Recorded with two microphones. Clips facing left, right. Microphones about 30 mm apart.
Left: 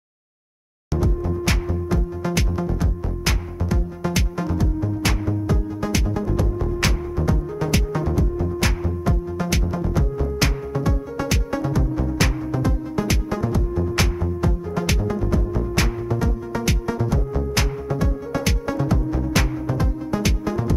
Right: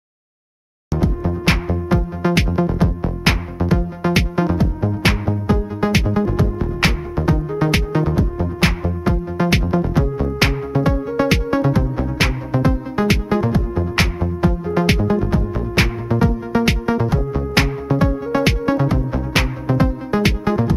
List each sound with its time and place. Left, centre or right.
0.9 s music: right